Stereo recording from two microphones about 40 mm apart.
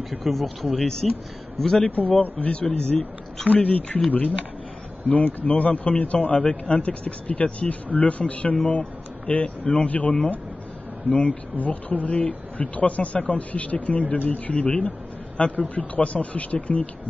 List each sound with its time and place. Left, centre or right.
0.1 s speech: centre
1.8 s a man's voice: left
3.4 s a man's voice: left